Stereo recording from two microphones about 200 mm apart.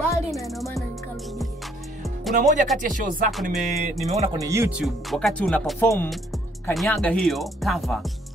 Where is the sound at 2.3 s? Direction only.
40° right (ahead or behind).